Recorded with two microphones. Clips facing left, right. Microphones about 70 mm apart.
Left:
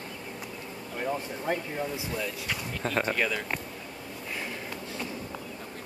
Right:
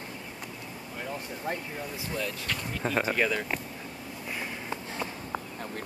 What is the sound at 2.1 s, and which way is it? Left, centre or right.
Speech, centre.